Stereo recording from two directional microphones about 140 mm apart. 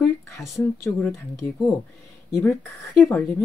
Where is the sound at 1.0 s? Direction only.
15° left (ahead or behind).